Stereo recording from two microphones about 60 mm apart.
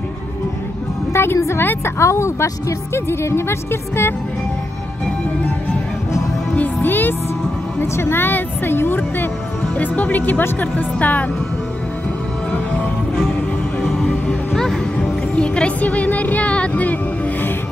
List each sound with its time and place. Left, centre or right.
1.1 s a woman's voice: left
2.0 s a woman's voice: left
6.5 s music: left
7.8 s speech: left
13.8 s music: centre
15.3 s music: centre